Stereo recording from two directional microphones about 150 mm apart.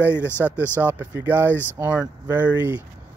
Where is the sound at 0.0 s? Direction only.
15° right (ahead or behind).